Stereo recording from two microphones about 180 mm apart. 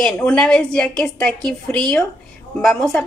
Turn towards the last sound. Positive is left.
turn(degrees=5)  # may be behind; listen again after turning